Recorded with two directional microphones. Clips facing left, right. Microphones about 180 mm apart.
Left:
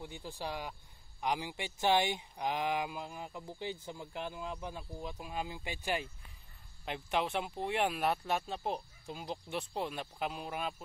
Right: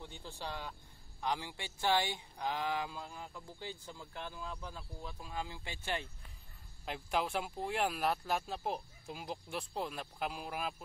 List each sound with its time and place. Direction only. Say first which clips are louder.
0.0 s speech: left 3 dB; 10° left (ahead or behind)
6.8 s speech: left 2 dB; centre (ahead or behind)